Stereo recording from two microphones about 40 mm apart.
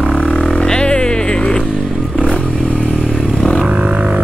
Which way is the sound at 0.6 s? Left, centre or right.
Left.